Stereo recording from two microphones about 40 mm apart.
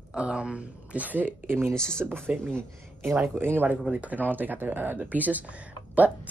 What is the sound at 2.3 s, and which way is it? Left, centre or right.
Speech, right.